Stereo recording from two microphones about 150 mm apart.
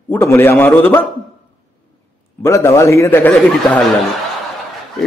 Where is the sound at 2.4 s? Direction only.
20° left (ahead or behind).